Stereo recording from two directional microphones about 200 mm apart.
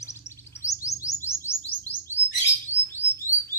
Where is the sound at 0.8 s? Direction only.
15° left (ahead or behind).